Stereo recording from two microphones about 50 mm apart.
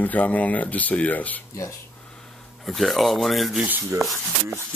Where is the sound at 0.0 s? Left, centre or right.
Left.